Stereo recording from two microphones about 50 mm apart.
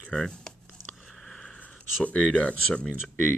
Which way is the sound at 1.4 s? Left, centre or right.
Left.